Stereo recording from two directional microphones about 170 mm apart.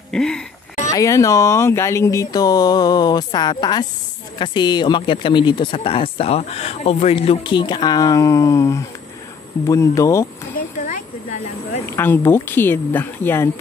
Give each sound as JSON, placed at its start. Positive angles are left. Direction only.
{"t": 0.1, "sound": "speech", "side_deg": 5}
{"t": 0.9, "sound": "speech", "side_deg": 20}
{"t": 11.8, "sound": "speech", "side_deg": 15}